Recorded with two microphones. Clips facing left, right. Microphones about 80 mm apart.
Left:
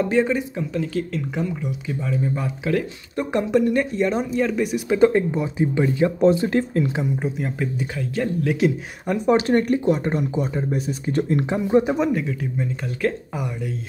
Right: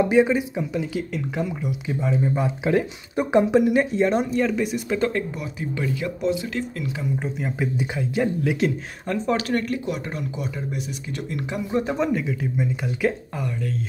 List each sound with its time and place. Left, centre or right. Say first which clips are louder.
0.0 s speech: right 2 dB; centre
4.1 s speech: even; centre; by 7.1 s left
7.2 s speech: left 1 dB; centre
8.5 s speech: left 2 dB; centre
9.0 s speech: left 5 dB; centre
11.8 s speech: left 2 dB; centre
13.3 s speech: left 1 dB; centre